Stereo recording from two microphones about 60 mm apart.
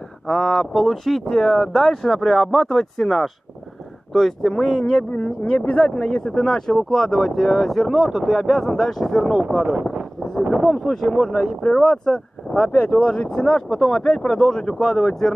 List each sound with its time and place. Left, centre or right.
0.3 s speech: centre
1.3 s speech: centre
1.9 s speech: centre
5.7 s speech: centre
10.9 s speech: centre